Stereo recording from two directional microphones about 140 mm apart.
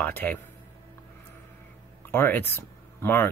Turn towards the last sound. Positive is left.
turn(degrees=15)  # may be behind; listen again after turning